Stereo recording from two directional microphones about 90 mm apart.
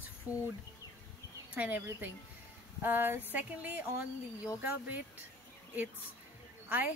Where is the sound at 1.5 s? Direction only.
15° right (ahead or behind).